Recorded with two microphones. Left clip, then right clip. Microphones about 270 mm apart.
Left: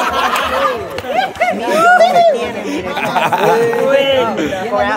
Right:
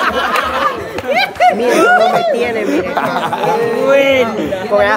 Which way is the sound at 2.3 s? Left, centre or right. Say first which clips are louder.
Right 4 dB; centre.